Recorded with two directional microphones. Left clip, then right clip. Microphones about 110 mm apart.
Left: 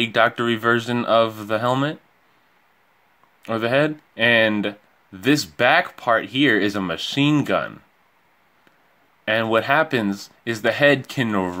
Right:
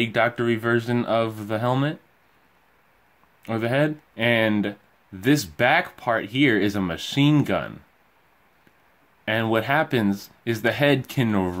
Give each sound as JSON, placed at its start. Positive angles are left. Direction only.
{"t": 0.0, "sound": "speech", "side_deg": 15}
{"t": 3.4, "sound": "speech", "side_deg": 15}
{"t": 9.2, "sound": "speech", "side_deg": 15}